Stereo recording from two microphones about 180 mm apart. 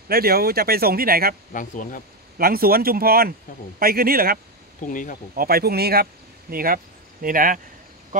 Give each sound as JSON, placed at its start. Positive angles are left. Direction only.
{"t": 0.1, "sound": "speech", "side_deg": -55}
{"t": 1.5, "sound": "speech", "side_deg": 45}
{"t": 2.3, "sound": "speech", "side_deg": -55}
{"t": 4.8, "sound": "speech", "side_deg": 45}
{"t": 5.3, "sound": "speech", "side_deg": -55}